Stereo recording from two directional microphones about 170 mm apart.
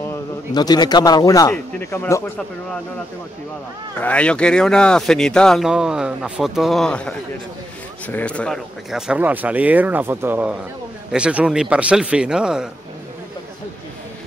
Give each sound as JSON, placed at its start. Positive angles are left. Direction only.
{"t": 0.6, "sound": "a man's voice", "side_deg": 25}
{"t": 4.0, "sound": "speech", "side_deg": 5}
{"t": 8.9, "sound": "speech", "side_deg": -5}